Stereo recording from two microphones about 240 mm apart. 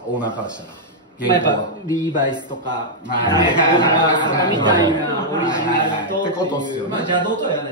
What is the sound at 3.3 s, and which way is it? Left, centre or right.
Speech, centre.